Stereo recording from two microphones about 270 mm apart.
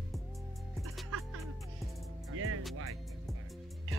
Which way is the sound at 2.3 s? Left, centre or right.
Right.